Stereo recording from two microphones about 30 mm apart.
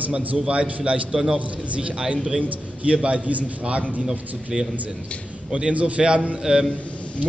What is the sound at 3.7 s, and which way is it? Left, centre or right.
Speech, right.